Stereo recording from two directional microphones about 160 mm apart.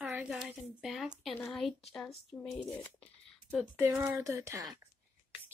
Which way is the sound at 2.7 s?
10° left (ahead or behind).